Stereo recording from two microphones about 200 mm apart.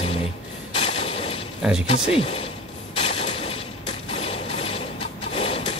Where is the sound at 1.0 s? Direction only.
30° left (ahead or behind).